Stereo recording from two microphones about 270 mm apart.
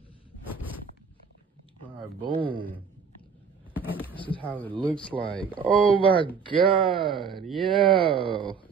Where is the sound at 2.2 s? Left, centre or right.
Centre.